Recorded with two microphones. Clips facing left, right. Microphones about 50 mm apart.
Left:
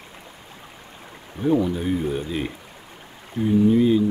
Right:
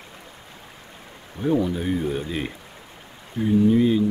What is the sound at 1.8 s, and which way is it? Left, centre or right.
Speech, centre.